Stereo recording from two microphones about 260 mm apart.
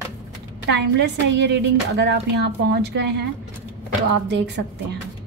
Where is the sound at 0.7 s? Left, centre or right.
Right.